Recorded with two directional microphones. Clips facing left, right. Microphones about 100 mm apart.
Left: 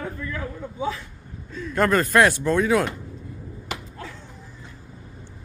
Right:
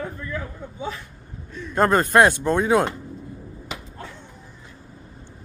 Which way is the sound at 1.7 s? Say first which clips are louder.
Right 2 dB; 25° right (ahead or behind).